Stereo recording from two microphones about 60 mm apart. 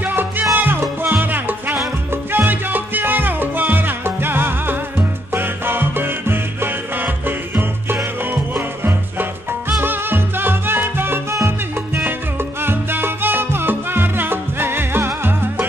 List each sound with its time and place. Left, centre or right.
0.0 s music: right
0.6 s salsa music: right
2.3 s music: right
12.6 s salsa music: right